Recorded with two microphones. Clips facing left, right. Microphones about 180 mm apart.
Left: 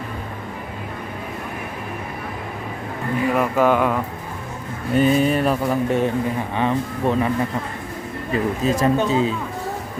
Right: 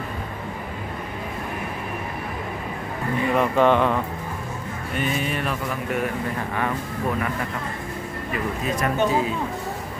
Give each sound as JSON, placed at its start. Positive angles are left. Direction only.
{"t": 3.3, "sound": "speech", "side_deg": 5}
{"t": 4.9, "sound": "speech", "side_deg": 35}
{"t": 8.3, "sound": "speech", "side_deg": 30}